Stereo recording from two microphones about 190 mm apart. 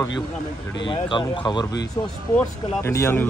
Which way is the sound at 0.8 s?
25° left (ahead or behind).